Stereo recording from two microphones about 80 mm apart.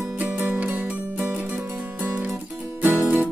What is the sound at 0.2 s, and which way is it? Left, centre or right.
Music, centre.